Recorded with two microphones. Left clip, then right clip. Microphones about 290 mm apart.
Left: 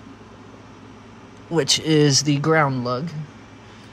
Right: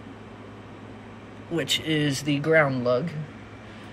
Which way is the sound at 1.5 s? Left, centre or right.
Left.